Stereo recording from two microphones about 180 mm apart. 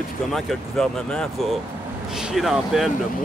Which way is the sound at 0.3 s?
Centre (ahead or behind).